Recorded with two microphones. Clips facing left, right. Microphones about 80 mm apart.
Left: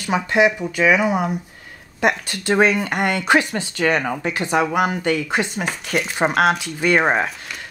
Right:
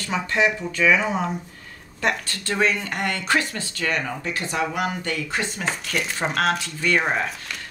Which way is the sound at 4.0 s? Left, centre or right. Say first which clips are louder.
Left 5 dB; left.